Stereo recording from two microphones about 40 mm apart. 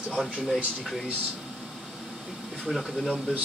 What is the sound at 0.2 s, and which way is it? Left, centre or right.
Speech, centre.